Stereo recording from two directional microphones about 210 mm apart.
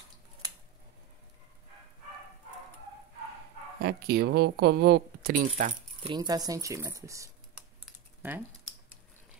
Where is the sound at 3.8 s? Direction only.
50° right (ahead or behind).